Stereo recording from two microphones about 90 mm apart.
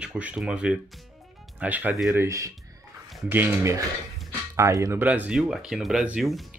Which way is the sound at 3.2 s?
20° right (ahead or behind).